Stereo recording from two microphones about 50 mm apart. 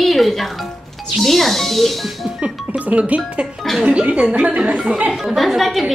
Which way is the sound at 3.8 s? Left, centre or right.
Centre.